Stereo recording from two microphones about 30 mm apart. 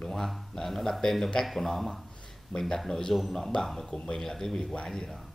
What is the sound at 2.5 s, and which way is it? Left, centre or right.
Speech, left.